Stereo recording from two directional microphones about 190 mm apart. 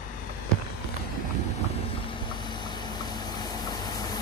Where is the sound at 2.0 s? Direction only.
25° left (ahead or behind).